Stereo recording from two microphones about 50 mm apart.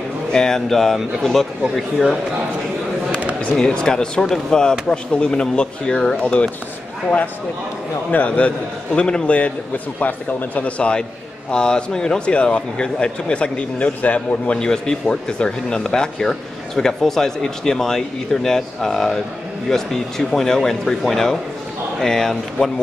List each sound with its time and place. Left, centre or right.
0.3 s speech: centre
3.5 s speech: centre
8.1 s speech: left
10.8 s speech: centre